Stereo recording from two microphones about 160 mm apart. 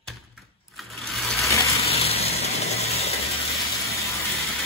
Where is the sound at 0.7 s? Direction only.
Centre (ahead or behind).